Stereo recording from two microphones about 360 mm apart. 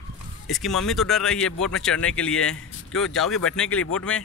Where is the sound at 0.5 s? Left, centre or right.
Centre.